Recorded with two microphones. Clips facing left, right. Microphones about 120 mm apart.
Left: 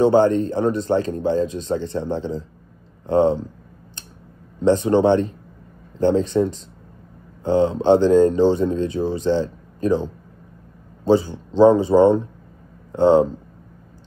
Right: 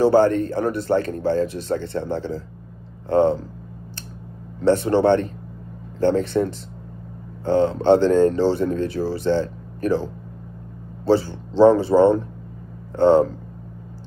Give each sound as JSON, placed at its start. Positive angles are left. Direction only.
{"t": 0.0, "sound": "speech", "side_deg": 20}
{"t": 4.6, "sound": "speech", "side_deg": 20}
{"t": 11.1, "sound": "speech", "side_deg": 15}